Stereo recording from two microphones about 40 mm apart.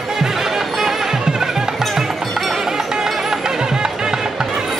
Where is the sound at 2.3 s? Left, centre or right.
Centre.